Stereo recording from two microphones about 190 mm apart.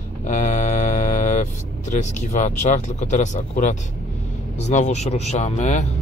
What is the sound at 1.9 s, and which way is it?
Speech, 40° left (ahead or behind).